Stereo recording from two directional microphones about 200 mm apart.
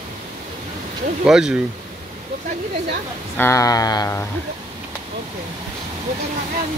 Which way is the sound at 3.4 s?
15° left (ahead or behind).